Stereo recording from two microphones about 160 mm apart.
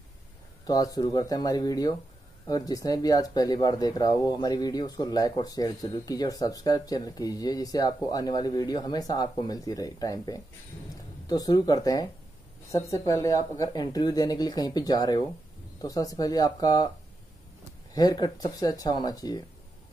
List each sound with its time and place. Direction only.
0.7 s speech: 20° left (ahead or behind)
17.9 s speech: 25° left (ahead or behind)